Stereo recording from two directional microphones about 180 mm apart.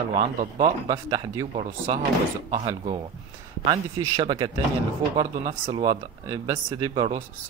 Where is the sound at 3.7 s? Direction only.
25° right (ahead or behind).